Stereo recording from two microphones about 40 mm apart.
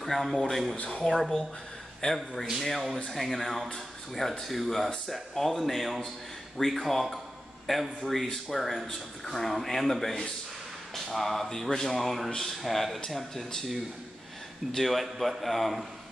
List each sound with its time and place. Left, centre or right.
0.0 s speech: centre
2.0 s a man's voice: centre
2.6 s a man's voice: centre
14.7 s speech: centre